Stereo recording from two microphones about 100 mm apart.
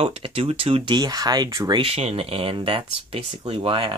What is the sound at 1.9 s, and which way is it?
Speech, 90° right.